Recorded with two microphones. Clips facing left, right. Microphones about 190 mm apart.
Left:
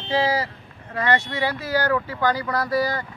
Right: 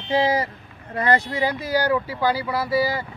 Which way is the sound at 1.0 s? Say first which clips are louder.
Right 2 dB; 35° right (ahead or behind).